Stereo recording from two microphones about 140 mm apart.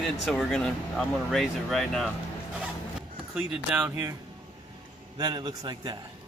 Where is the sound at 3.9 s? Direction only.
20° right (ahead or behind).